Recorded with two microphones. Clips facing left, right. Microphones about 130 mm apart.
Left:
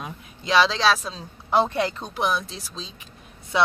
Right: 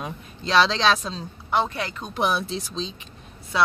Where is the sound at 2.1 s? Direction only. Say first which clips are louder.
Right 1 dB; 5° right (ahead or behind).